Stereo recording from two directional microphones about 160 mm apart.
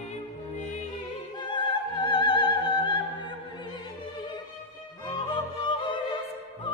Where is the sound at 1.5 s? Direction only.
30° left (ahead or behind).